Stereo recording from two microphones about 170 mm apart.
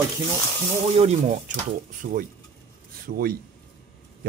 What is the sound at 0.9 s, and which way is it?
Speech, 40° right (ahead or behind).